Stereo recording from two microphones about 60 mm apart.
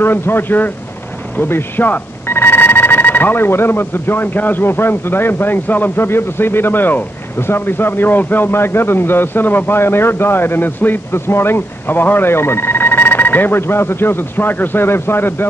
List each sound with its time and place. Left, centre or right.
0.0 s a man's voice: left